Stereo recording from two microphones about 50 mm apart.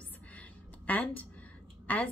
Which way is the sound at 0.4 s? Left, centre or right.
Left.